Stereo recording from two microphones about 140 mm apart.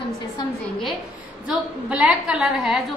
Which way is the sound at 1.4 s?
5° right (ahead or behind).